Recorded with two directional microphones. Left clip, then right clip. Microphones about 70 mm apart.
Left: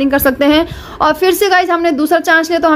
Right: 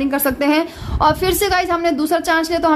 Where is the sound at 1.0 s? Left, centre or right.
Centre.